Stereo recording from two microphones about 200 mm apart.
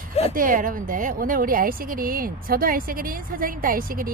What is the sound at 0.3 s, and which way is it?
A woman's voice, 45° right (ahead or behind).